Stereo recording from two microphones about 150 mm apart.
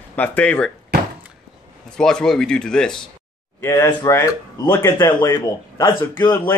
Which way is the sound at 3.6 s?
20° left (ahead or behind).